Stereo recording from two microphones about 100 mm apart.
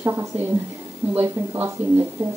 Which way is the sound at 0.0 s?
25° right (ahead or behind).